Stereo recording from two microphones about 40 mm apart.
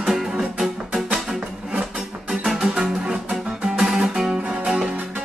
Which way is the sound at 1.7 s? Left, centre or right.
Centre.